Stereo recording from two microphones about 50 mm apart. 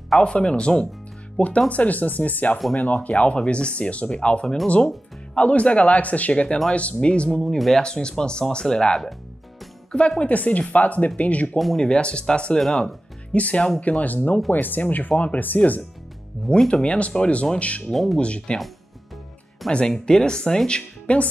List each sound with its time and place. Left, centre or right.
0.2 s speech: centre
1.7 s speech: left
7.4 s speech: centre
7.8 s speech: centre
10.3 s speech: left
11.5 s speech: centre
11.8 s speech: centre; by 15.8 s left
16.5 s speech: centre
16.8 s speech: left
17.9 s speech: centre
18.2 s speech: left
19.9 s speech: centre